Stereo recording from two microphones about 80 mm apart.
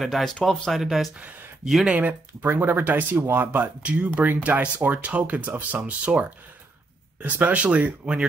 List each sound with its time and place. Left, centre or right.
0.0 s speech: centre
2.0 s speech: right